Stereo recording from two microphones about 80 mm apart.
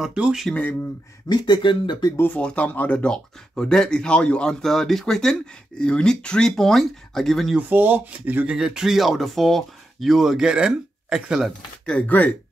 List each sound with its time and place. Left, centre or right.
0.0 s speech: centre
1.3 s speech: left
2.3 s speech: centre
7.5 s speech: right
8.5 s speech: centre
11.8 s speech: centre